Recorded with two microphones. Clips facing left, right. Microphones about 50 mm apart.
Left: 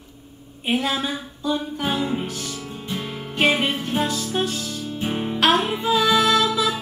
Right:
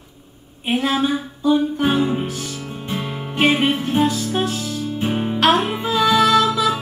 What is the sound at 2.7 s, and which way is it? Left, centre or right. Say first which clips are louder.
Music: right 5 dB; right.